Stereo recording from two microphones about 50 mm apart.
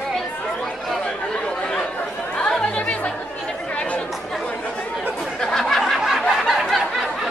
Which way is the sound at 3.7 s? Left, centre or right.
Left.